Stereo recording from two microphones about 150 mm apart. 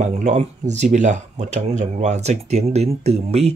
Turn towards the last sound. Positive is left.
turn(degrees=-45)  # may be behind; listen again after turning